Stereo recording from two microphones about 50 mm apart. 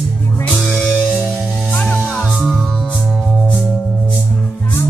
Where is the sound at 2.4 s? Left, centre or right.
Centre.